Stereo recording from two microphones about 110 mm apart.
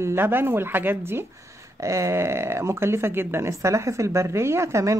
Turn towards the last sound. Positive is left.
turn(degrees=-25)  # may be behind; listen again after turning